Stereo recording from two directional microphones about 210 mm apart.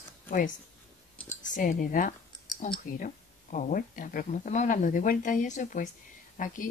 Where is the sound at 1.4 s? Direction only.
40° left (ahead or behind).